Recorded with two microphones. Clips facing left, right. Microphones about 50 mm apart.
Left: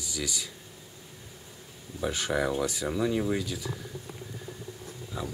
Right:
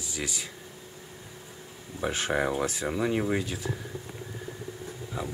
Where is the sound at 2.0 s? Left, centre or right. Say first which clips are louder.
Right 1 dB; right.